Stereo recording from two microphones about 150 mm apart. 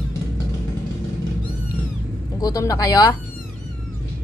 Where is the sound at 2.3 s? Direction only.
25° left (ahead or behind).